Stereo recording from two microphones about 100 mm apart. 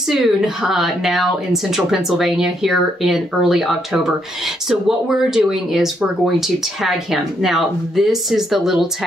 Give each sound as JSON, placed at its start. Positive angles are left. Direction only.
{"t": 0.1, "sound": "speech", "side_deg": -5}